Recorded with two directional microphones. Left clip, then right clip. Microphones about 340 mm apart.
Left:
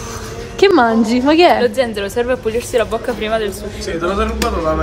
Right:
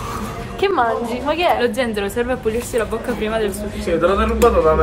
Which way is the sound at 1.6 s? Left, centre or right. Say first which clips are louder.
Left 3 dB; centre.